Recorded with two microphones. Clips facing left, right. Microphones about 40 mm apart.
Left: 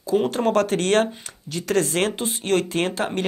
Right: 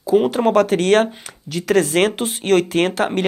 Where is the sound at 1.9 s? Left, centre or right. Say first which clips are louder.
Right 6 dB; right.